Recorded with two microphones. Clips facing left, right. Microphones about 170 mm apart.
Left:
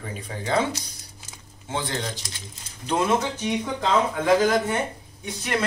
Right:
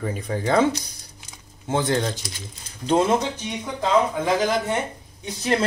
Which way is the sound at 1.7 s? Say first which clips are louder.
Right 7 dB; 45° right (ahead or behind).